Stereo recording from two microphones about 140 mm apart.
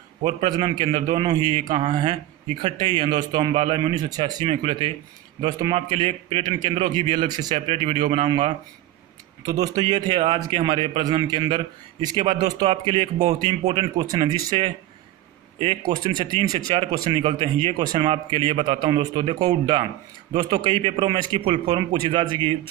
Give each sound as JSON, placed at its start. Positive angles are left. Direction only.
{"t": 0.2, "sound": "speech", "side_deg": -35}
{"t": 9.4, "sound": "speech", "side_deg": -25}
{"t": 12.6, "sound": "speech", "side_deg": -40}
{"t": 13.9, "sound": "speech", "side_deg": -30}
{"t": 15.9, "sound": "speech", "side_deg": -30}